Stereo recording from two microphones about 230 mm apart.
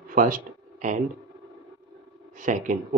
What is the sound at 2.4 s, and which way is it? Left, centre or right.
Speech, right.